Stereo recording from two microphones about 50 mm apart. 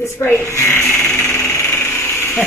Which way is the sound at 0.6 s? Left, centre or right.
Left.